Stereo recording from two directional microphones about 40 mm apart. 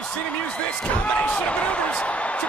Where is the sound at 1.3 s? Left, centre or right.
Left.